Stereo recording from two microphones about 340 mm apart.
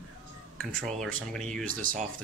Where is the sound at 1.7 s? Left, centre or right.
Right.